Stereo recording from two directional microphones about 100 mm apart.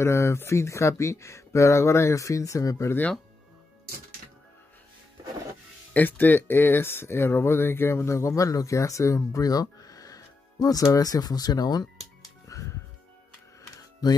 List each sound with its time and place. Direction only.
0.0 s speech: 25° left (ahead or behind)
2.9 s speech: 15° left (ahead or behind)
5.9 s speech: 15° left (ahead or behind); by 11.9 s 40° left (ahead or behind)
12.4 s music: 35° left (ahead or behind)